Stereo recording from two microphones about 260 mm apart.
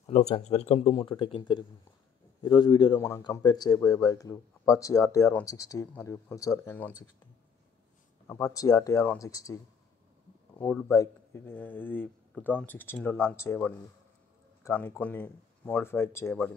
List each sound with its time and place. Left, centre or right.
0.0 s speech: left; by 6.9 s centre
8.3 s speech: centre
10.6 s speech: centre